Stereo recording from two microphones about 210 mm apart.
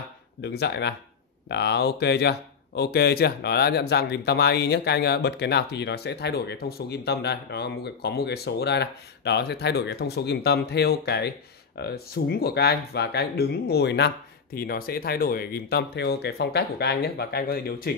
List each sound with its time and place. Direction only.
0.4 s speech: 50° left (ahead or behind)